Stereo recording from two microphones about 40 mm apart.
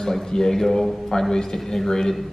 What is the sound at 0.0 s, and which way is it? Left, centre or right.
A man's voice, centre.